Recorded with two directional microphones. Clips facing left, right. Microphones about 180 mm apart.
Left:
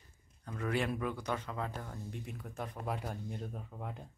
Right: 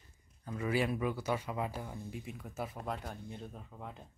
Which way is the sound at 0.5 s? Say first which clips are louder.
Right 2 dB; 5° right (ahead or behind).